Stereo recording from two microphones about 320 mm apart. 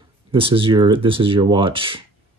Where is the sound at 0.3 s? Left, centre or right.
Centre.